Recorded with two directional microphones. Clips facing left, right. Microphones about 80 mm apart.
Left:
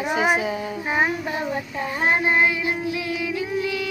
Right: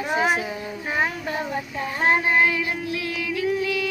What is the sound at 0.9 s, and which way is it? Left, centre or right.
Child singing, centre.